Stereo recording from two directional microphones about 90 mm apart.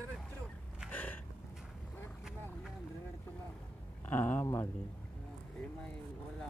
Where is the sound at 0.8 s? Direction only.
20° left (ahead or behind).